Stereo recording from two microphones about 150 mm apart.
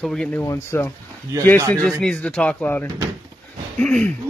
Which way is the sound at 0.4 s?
15° left (ahead or behind).